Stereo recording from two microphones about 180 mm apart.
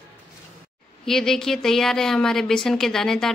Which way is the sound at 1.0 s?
Centre (ahead or behind).